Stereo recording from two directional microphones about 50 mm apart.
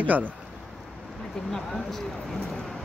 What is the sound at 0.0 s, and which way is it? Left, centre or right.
Speech, right.